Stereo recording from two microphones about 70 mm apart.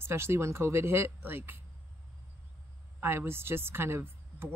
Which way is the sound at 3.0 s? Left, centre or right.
Right.